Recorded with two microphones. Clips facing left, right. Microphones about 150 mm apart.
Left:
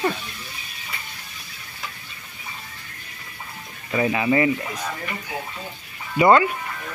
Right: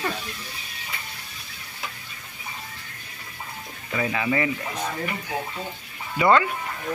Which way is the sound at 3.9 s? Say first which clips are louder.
Left 5 dB; 25° left (ahead or behind).